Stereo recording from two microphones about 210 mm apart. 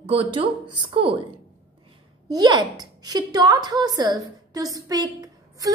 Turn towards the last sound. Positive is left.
turn(degrees=-20)  # may be behind; listen again after turning